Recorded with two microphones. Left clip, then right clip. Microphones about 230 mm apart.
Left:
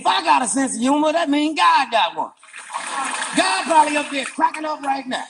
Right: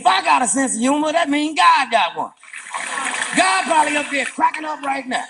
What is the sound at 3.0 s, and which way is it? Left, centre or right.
Speech, right.